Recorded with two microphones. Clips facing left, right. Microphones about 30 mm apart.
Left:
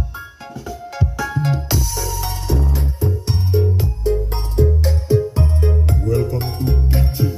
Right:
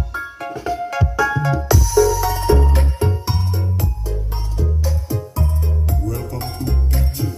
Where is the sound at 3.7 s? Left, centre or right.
Left.